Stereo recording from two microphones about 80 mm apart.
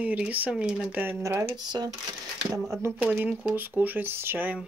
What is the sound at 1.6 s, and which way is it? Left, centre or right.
Speech, right.